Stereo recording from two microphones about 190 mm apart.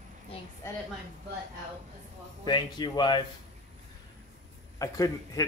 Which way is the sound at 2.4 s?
25° left (ahead or behind).